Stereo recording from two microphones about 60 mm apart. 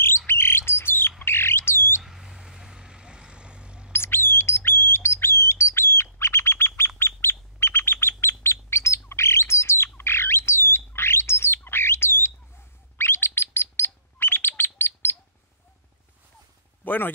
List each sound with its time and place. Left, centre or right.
0.3 s bird: left
2.0 s vehicle: centre
3.9 s bird: left
16.8 s speech: left